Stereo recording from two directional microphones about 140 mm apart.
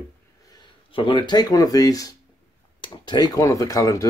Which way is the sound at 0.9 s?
35° left (ahead or behind).